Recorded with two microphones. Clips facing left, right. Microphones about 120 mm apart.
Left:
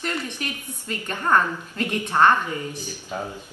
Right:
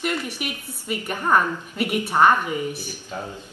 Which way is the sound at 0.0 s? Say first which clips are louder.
Right 2 dB; 10° right (ahead or behind).